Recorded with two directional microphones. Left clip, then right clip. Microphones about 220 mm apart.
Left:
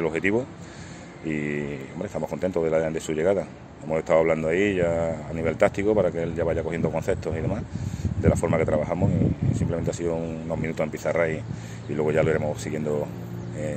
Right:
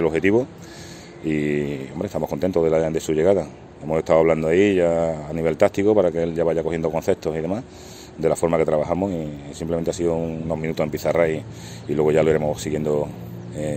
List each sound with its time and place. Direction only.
0.0 s speech: 55° right (ahead or behind)
2.3 s speech: 60° right (ahead or behind)